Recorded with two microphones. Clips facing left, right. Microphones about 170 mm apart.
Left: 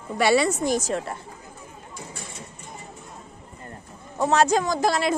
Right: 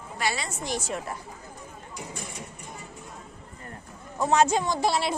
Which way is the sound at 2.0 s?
15° right (ahead or behind).